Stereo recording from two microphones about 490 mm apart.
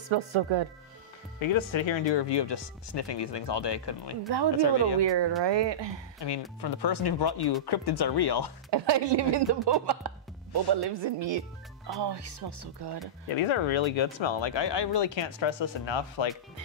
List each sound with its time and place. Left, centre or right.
0.1 s speech: right
1.4 s speech: left
5.0 s speech: right
6.1 s speech: left
8.6 s speech: right
13.4 s speech: left